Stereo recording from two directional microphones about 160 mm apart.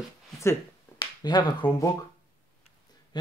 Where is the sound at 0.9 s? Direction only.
30° left (ahead or behind).